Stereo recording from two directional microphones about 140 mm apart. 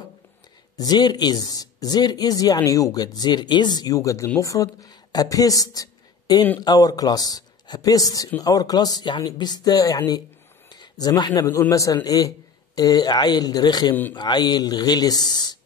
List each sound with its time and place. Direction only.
0.7 s speech: 30° left (ahead or behind)